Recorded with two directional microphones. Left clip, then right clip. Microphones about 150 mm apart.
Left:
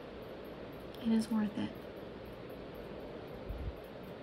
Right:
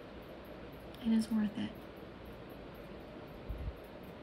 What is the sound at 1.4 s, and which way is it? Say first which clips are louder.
Speech: even; 5° left (ahead or behind).